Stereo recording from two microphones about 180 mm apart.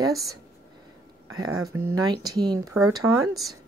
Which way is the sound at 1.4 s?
20° right (ahead or behind).